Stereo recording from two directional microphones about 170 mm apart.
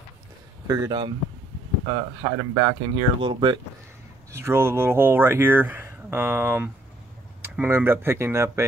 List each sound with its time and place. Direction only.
0.7 s speech: 25° right (ahead or behind)
4.3 s speech: 15° right (ahead or behind)